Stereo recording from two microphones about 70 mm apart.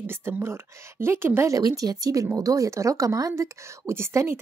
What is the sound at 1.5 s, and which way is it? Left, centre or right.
A woman's voice, right.